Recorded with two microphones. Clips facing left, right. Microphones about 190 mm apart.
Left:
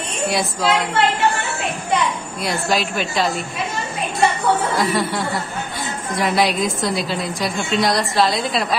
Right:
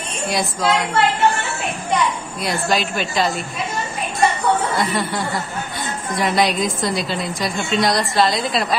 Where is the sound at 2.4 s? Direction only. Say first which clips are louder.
Even; centre (ahead or behind).